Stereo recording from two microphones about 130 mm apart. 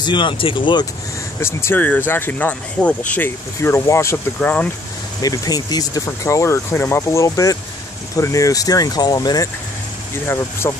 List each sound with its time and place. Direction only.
0.0 s speech: 35° left (ahead or behind)
1.4 s speech: 20° left (ahead or behind)
5.2 s speech: 30° left (ahead or behind)
10.2 s speech: 20° left (ahead or behind)